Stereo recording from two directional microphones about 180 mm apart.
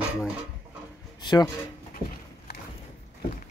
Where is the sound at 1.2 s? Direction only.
25° left (ahead or behind).